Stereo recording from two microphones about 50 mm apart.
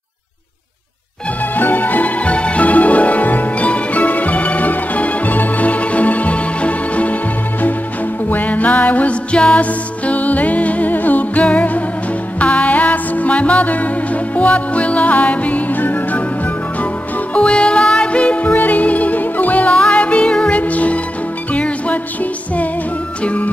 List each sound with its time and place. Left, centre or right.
1.5 s music: left
8.3 s music: left
17.3 s music: centre